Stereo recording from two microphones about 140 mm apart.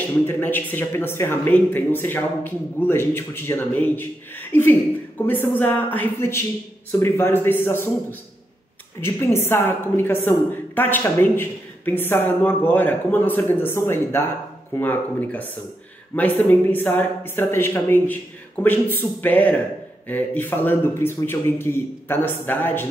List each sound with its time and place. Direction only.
0.3 s a woman's voice: 15° left (ahead or behind)
9.0 s a woman's voice: 15° left (ahead or behind)